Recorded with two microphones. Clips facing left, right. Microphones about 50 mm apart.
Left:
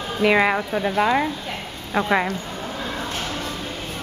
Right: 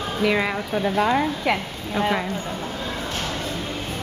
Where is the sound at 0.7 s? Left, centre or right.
Centre.